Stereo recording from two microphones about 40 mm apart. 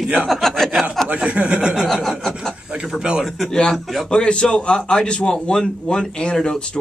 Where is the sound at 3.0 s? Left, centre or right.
Right.